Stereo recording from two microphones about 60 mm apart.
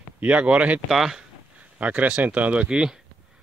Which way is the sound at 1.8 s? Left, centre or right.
Right.